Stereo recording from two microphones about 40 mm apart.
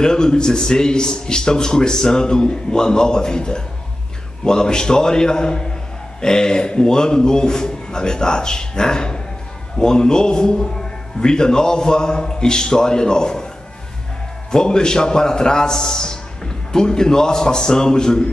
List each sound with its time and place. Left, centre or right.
0.0 s a man's voice: centre
14.5 s a man's voice: centre